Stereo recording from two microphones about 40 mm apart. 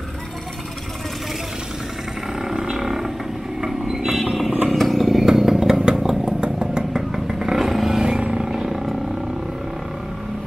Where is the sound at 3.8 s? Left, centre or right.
Centre.